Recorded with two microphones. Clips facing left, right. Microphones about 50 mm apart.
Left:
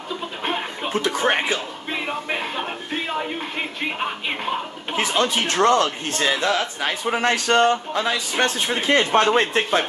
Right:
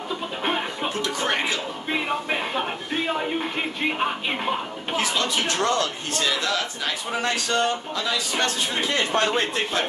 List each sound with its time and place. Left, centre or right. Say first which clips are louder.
0.4 s music: even; centre
1.0 s speech: left 5 dB; left
1.9 s music: right 1 dB; centre
4.9 s a man's voice: left 3 dB; left
7.1 s a man's voice: left 6 dB; left